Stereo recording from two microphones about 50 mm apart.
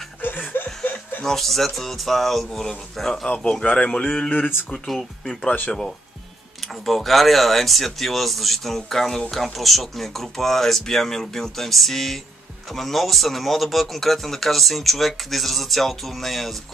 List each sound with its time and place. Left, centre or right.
0.5 s chuckle: left
1.2 s a man's voice: centre; by 4.5 s left
4.8 s speech: centre
6.9 s a man's voice: centre